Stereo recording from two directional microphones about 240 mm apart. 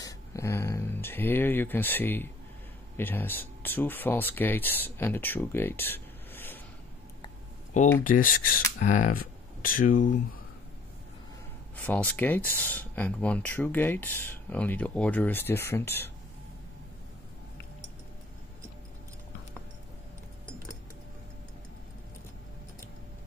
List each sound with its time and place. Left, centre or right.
0.0 s speech: centre
8.0 s speech: left
11.7 s speech: centre